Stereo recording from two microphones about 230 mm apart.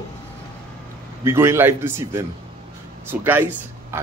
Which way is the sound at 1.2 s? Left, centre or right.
Centre.